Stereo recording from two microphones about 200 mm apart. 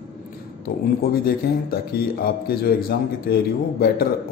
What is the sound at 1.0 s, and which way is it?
A man's voice, 50° left (ahead or behind).